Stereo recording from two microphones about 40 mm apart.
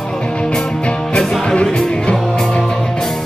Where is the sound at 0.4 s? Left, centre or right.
Centre.